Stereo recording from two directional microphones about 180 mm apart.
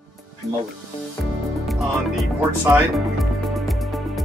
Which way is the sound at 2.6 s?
Centre (ahead or behind).